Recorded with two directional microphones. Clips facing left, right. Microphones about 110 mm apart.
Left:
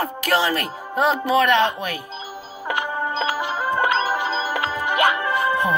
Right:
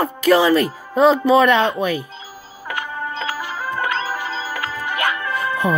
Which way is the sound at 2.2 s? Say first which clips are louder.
Left 4 dB; 20° left (ahead or behind).